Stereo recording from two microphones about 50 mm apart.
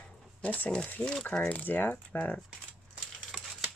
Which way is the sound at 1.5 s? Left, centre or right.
Left.